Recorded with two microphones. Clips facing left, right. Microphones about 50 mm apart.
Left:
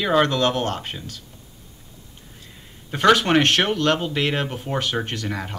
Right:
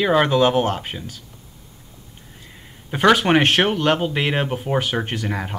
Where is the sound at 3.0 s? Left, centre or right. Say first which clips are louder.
Right 1 dB; centre.